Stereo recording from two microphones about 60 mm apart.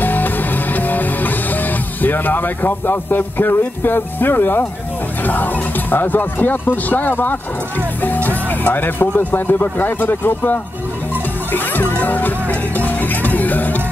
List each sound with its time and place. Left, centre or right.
0.0 s music: left
5.2 s speech: left
11.5 s music: left